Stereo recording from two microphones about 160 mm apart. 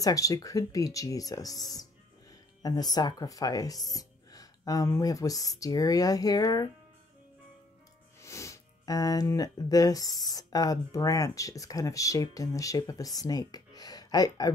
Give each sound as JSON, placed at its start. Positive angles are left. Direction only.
{"t": 0.0, "sound": "speech", "side_deg": 20}
{"t": 2.6, "sound": "speech", "side_deg": 25}
{"t": 8.2, "sound": "speech", "side_deg": 20}